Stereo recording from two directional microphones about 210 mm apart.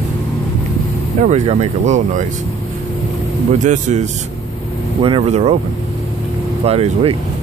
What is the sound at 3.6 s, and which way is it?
Speech, 35° right (ahead or behind).